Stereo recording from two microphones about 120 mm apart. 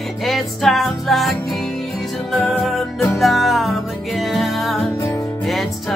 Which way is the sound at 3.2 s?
Centre (ahead or behind).